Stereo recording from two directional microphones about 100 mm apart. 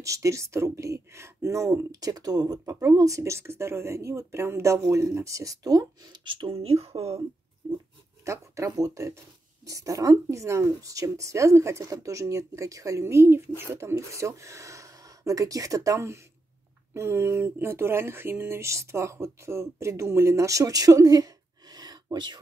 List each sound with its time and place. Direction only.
0.0 s speech: 35° right (ahead or behind)
6.2 s speech: 55° right (ahead or behind)
6.5 s speech: 85° right
7.6 s a sound: 55° right (ahead or behind)
8.3 s speech: 35° right (ahead or behind)